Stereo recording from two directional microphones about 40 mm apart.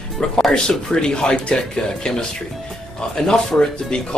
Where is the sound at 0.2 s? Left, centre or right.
Centre.